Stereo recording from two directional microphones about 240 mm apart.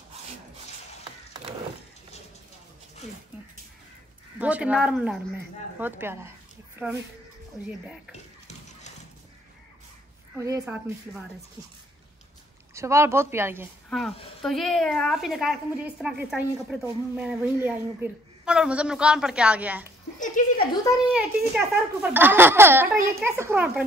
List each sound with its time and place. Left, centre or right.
4.4 s a woman's voice: centre
10.4 s speech: centre
12.7 s speech: centre
13.8 s a woman's voice: centre
20.2 s speech: left
21.1 s speech: centre